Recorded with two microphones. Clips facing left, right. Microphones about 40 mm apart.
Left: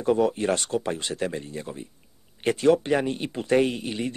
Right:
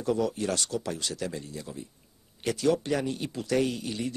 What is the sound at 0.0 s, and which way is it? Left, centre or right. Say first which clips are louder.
Speech: left 6 dB; left.